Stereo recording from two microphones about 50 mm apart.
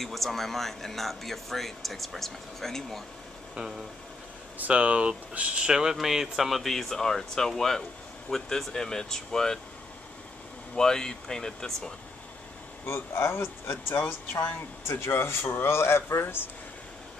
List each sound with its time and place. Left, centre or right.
0.0 s speech: centre
3.5 s speech: centre
4.6 s speech: right; by 9.6 s centre
10.8 s speech: centre
12.8 s speech: left